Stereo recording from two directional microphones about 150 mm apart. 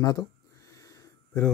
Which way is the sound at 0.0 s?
25° left (ahead or behind).